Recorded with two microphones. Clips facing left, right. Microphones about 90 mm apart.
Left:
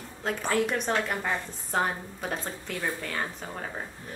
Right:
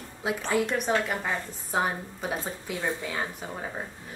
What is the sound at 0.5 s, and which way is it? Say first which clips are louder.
A woman's voice: right 1 dB; 5° right (ahead or behind).